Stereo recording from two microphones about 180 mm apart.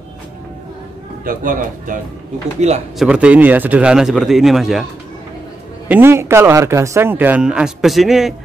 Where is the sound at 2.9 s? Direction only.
5° right (ahead or behind).